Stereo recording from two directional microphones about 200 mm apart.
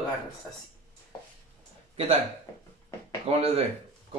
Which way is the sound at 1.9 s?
30° right (ahead or behind).